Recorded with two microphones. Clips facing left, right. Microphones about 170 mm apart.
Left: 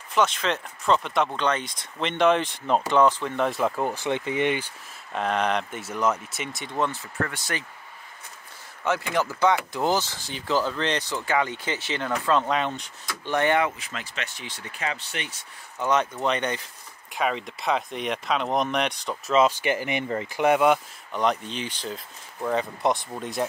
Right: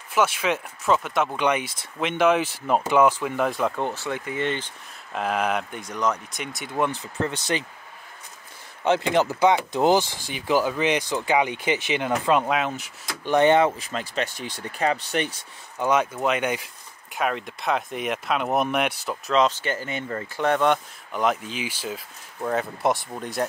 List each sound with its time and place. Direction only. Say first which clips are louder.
0.1 s speech: right 1 dB; 10° right (ahead or behind)
3.9 s speech: left 3 dB; 20° left (ahead or behind)
5.1 s speech: even; 5° right (ahead or behind)
5.8 s speech: left 1 dB; 5° left (ahead or behind); by 7.6 s 20° right (ahead or behind)
8.8 s speech: right 5 dB; 25° right (ahead or behind); by 12.9 s 5° right (ahead or behind)
13.2 s speech: right 5 dB; 20° right (ahead or behind)
13.7 s speech: right 6 dB; 35° right (ahead or behind)
15.8 s speech: right 2 dB; 10° right (ahead or behind)